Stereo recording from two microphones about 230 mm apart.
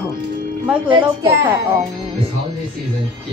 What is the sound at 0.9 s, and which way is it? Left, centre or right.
Speech, centre.